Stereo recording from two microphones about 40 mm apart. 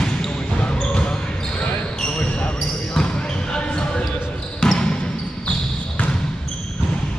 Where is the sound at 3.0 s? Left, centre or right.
Centre.